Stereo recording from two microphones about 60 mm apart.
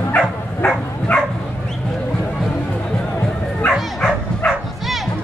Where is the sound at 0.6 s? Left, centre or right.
Left.